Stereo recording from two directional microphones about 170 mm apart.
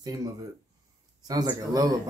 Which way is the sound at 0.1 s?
20° right (ahead or behind).